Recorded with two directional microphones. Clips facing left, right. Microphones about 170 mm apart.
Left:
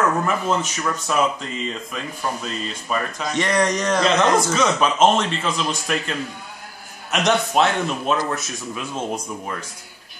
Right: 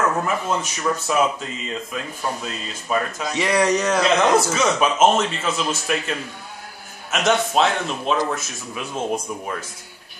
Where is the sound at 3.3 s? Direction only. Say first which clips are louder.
Right 1 dB; 5° right (ahead or behind).